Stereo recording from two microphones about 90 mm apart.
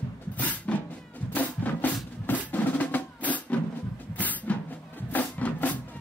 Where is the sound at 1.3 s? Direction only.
20° left (ahead or behind).